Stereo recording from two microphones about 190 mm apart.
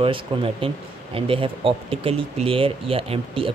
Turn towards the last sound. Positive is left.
turn(degrees=-30)  # may be behind; listen again after turning